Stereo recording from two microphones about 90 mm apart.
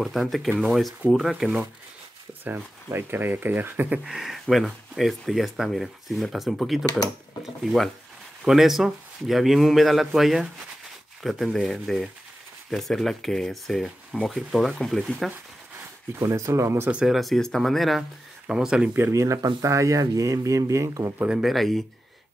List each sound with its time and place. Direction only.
0.0 s speech: centre (ahead or behind)
1.4 s speech: 10° right (ahead or behind)
4.0 s speech: 5° right (ahead or behind)
16.2 s speech: 35° right (ahead or behind)
16.9 s speech: 5° right (ahead or behind)
19.1 s speech: 35° right (ahead or behind)
21.4 s speech: centre (ahead or behind)